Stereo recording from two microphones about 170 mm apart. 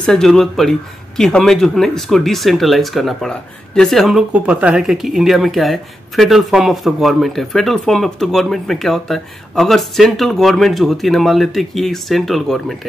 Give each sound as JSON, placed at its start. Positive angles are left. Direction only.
{"t": 0.0, "sound": "speech", "side_deg": 5}